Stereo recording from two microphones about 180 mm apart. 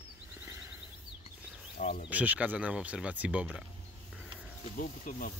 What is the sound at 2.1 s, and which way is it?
Speech, 10° right (ahead or behind).